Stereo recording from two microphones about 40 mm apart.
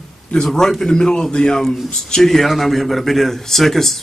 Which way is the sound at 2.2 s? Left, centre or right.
Centre.